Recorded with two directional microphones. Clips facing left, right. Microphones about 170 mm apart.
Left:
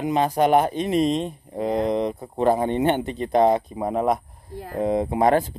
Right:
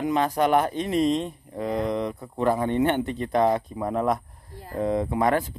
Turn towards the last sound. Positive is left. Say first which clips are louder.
# left 4 dB
turn(degrees=25)  # may be behind; listen again after turning